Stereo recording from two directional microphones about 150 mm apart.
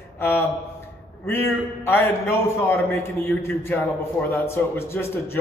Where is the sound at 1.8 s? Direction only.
15° left (ahead or behind).